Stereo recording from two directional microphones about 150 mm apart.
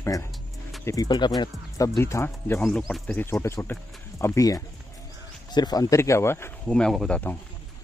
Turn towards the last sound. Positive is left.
turn(degrees=10)  # may be behind; listen again after turning